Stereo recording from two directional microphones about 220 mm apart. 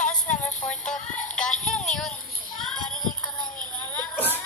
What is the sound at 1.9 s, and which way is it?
Children playing, centre (ahead or behind).